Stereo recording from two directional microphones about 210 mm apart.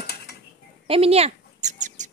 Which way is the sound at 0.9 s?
30° right (ahead or behind).